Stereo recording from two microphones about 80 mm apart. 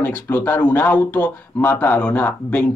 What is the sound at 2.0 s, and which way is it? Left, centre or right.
Speech, centre.